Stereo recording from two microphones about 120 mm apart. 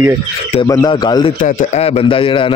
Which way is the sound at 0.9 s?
40° left (ahead or behind).